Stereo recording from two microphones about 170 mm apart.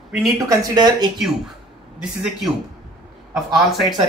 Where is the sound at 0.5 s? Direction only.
25° right (ahead or behind).